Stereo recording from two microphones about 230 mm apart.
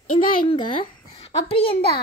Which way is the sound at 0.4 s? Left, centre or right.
Left.